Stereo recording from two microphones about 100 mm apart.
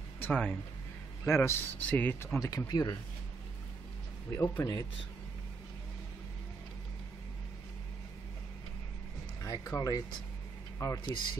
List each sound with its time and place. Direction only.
0.2 s speech: 15° left (ahead or behind)
1.2 s speech: 25° left (ahead or behind)
2.4 s speech: 35° left (ahead or behind)
4.3 s speech: 30° left (ahead or behind)
9.4 s speech: 35° left (ahead or behind)